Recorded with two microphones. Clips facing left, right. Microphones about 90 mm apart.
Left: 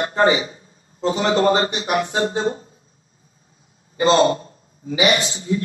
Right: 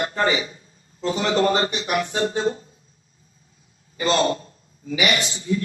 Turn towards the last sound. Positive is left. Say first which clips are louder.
# left 3 dB
turn(degrees=35)  # may be behind; listen again after turning